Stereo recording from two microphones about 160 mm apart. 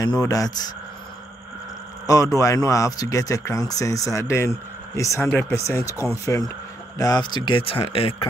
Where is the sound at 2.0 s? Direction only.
20° left (ahead or behind).